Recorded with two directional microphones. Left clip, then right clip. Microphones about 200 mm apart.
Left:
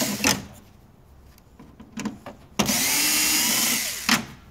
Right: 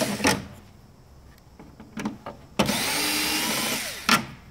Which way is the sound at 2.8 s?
5° left (ahead or behind).